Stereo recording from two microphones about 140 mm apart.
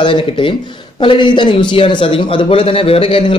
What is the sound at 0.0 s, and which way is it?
A man's voice, 40° left (ahead or behind).